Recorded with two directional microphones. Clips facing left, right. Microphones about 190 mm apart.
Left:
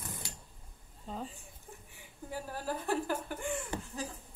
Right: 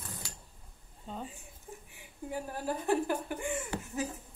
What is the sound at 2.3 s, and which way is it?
Speech, 15° right (ahead or behind).